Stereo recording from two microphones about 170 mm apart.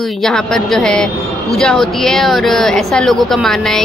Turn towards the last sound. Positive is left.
turn(degrees=0)  # may be behind; listen again after turning